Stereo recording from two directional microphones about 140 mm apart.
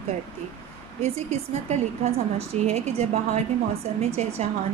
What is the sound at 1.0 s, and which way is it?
A woman's voice, 55° right (ahead or behind).